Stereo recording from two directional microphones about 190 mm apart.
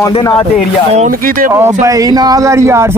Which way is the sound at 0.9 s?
45° right (ahead or behind).